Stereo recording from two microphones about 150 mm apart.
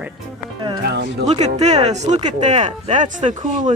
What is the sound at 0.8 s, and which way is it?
Music, 90° right.